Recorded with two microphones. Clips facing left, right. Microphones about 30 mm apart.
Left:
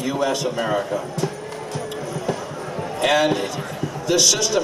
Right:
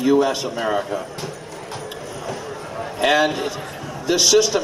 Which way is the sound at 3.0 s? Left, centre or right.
Centre.